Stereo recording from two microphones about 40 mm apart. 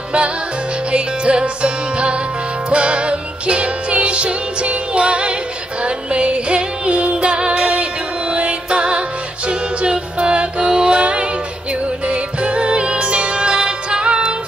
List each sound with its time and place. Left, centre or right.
0.9 s music: right